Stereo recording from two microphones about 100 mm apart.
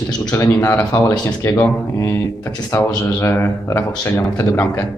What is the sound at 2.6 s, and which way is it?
Speech, 25° left (ahead or behind).